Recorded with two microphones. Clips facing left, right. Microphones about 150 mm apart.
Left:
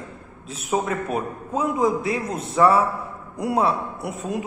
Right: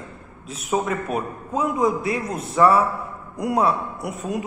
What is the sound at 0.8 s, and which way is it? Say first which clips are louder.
A man's voice: even; 25° left (ahead or behind).